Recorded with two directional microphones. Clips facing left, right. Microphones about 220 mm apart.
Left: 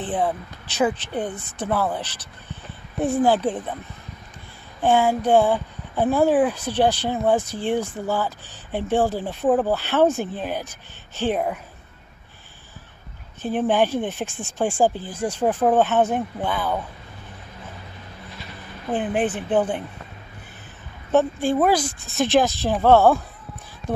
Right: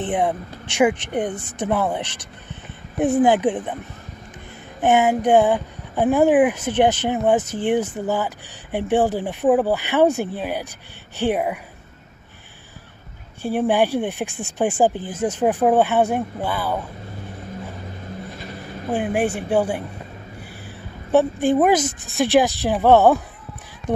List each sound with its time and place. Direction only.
0.0 s speech: 20° right (ahead or behind)
3.2 s speech: 15° right (ahead or behind)
4.8 s speech: 20° right (ahead or behind)
13.4 s speech: 10° right (ahead or behind)
18.3 s vehicle: 45° right (ahead or behind)
18.9 s speech: 10° right (ahead or behind)
21.1 s speech: 15° right (ahead or behind)